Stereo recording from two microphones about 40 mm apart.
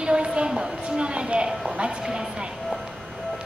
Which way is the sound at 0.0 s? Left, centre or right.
Right.